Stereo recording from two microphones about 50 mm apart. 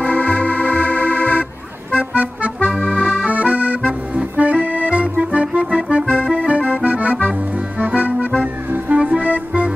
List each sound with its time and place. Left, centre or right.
0.0 s organ: left
2.1 s music: right
2.7 s accordion: centre
3.3 s accordion: right
5.2 s music: right
6.3 s accordion: right
8.9 s music: right